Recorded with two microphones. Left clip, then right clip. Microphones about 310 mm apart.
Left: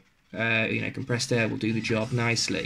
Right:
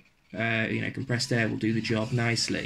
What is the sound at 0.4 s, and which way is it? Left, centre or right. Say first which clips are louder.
Speech: left 3 dB; left.